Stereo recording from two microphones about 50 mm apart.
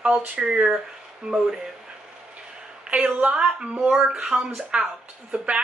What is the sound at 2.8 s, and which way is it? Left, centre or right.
A woman's voice, right.